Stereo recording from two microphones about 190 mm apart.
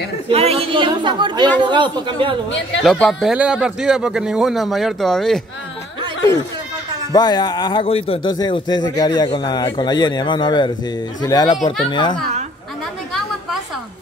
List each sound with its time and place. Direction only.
0.3 s a woman's voice: 30° right (ahead or behind)
2.8 s speech: centre (ahead or behind)
7.1 s a man's voice: 20° left (ahead or behind)